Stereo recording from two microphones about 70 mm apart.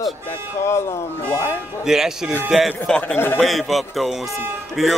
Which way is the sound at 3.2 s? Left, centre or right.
Left.